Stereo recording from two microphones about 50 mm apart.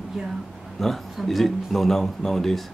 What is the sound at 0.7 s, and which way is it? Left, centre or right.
Speech, centre.